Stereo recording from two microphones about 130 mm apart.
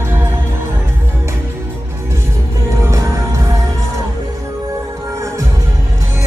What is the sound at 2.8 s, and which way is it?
Music, 25° right (ahead or behind).